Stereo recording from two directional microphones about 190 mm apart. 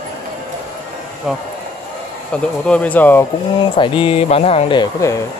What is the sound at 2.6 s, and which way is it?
Speech, 5° left (ahead or behind).